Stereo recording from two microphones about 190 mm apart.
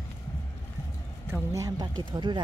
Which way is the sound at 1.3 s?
15° right (ahead or behind).